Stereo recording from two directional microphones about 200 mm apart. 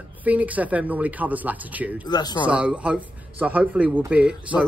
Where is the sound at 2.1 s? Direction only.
20° left (ahead or behind).